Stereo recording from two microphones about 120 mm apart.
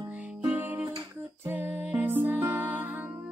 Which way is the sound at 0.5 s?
15° right (ahead or behind).